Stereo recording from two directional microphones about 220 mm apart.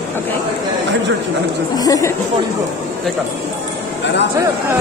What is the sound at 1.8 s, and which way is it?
Chatter, 15° left (ahead or behind).